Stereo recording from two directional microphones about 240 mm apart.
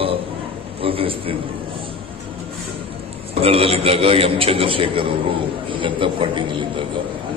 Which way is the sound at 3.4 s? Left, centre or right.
Right.